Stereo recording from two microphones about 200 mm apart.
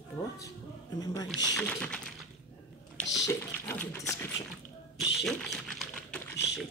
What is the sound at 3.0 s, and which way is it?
Bathtub, 5° left (ahead or behind).